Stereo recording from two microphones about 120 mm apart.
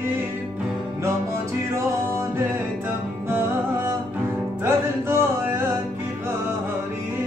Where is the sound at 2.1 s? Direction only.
20° right (ahead or behind).